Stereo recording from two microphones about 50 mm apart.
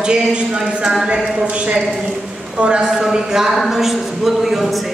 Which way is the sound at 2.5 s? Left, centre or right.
Right.